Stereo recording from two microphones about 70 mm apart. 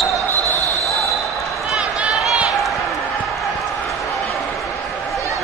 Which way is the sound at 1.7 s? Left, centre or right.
Centre.